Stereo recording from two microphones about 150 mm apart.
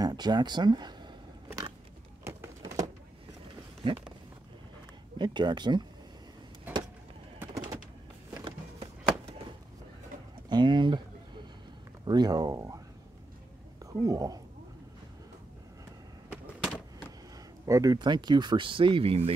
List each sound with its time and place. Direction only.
0.0 s speech: 30° right (ahead or behind)
2.2 s a sound: 15° right (ahead or behind)
3.8 s speech: 35° right (ahead or behind)
5.2 s speech: 30° right (ahead or behind)
7.3 s bird: 15° right (ahead or behind)
8.3 s power windows: 25° right (ahead or behind)
10.5 s a sound: 30° right (ahead or behind)
12.0 s speech: 30° right (ahead or behind)
13.8 s speech: 25° right (ahead or behind)
16.3 s a sound: 5° right (ahead or behind)
17.6 s speech: 20° right (ahead or behind); by 19.3 s 40° right (ahead or behind)